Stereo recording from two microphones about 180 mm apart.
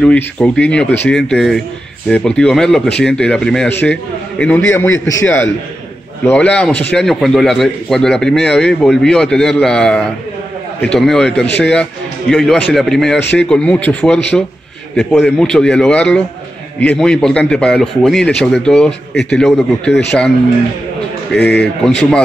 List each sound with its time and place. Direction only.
0.0 s a man's voice: 5° left (ahead or behind)
19.9 s speech: 70° left (ahead or behind)
21.3 s a man's voice: 5° left (ahead or behind)